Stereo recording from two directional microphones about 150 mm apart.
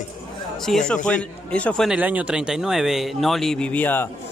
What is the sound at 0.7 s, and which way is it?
A man's voice, 5° left (ahead or behind).